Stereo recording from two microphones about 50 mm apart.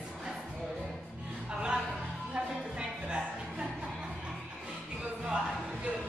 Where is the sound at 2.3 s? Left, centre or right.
Centre.